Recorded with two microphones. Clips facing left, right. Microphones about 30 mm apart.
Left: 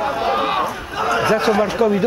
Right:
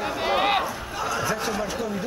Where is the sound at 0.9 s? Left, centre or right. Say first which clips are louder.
Left 10 dB; left.